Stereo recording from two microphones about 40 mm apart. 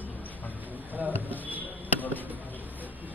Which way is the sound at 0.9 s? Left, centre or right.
Right.